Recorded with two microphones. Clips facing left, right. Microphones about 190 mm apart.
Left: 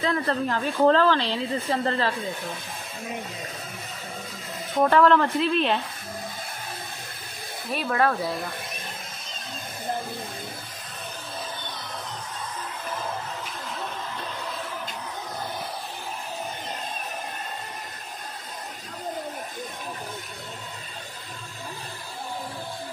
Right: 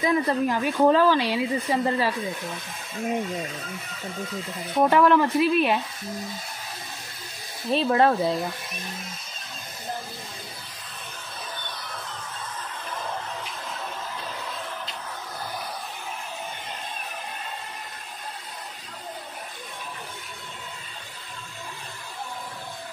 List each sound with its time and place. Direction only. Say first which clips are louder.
0.0 s speech: right 3 dB; 10° right (ahead or behind)
4.8 s speech: even; 15° right (ahead or behind)
7.7 s speech: right 4 dB; 25° right (ahead or behind)